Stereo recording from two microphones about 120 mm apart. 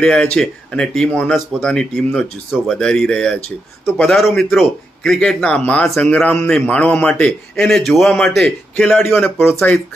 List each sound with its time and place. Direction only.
0.0 s a man's voice: 5° left (ahead or behind)
9.0 s a man's voice: 15° left (ahead or behind)
9.5 s a man's voice: 5° left (ahead or behind)